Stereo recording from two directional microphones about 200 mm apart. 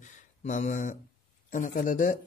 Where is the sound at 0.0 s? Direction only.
35° left (ahead or behind).